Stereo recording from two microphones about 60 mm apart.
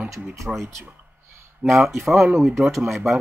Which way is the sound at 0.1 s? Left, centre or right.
Right.